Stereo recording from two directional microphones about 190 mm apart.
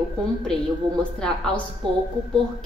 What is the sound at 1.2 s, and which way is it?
Speech, 5° left (ahead or behind).